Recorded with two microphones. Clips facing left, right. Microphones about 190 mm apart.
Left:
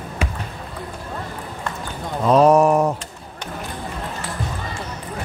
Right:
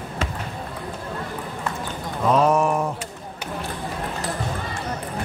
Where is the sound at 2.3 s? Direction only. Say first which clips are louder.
Left 6 dB; 35° left (ahead or behind).